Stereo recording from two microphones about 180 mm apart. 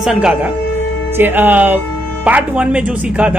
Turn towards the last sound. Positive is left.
turn(degrees=-5)  # may be behind; listen again after turning